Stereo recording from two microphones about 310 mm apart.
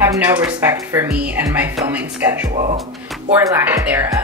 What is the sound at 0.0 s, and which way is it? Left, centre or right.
Speech, centre.